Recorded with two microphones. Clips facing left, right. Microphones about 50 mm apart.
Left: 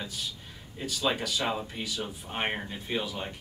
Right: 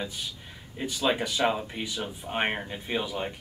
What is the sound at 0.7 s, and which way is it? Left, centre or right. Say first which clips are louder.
Speech: right 3 dB; right.